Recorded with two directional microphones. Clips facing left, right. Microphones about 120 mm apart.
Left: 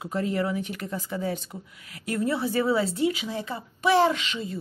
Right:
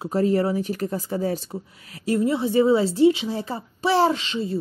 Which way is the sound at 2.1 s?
25° right (ahead or behind).